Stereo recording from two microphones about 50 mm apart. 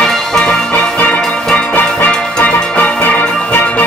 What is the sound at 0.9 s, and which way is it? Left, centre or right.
Music, left.